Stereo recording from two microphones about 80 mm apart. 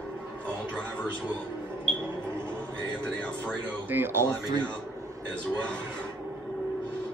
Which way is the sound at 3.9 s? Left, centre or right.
Right.